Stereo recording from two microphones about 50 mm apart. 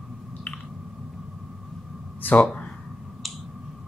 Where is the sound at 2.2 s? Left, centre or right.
Left.